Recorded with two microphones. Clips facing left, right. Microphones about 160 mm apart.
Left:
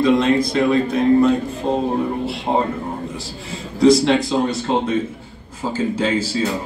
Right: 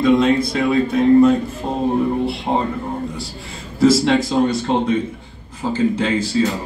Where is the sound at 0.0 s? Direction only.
Centre (ahead or behind).